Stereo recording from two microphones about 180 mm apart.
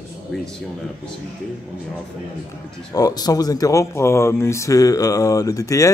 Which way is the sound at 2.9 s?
20° left (ahead or behind).